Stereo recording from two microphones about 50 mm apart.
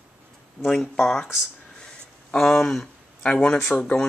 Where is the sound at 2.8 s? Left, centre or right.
Centre.